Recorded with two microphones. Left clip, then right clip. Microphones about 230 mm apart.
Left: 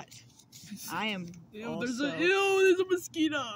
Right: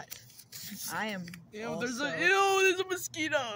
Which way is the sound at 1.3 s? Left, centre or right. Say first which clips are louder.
Right 1 dB; centre.